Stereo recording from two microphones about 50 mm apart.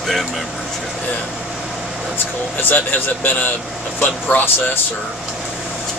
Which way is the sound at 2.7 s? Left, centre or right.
Left.